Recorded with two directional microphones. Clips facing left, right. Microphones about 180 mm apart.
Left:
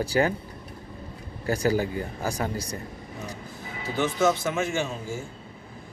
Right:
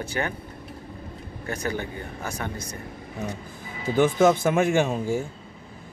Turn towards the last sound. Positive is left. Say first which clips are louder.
# right 7 dB
turn(degrees=-60)  # may be behind; listen again after turning